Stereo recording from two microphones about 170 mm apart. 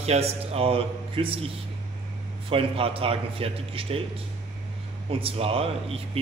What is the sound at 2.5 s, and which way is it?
Speech, 35° right (ahead or behind).